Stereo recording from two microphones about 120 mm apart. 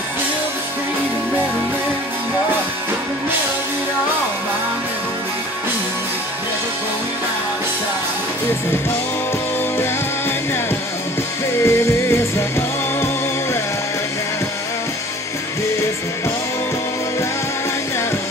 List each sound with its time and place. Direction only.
11.5 s music: 20° left (ahead or behind)